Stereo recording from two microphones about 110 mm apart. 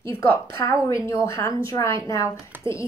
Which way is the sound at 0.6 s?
30° left (ahead or behind).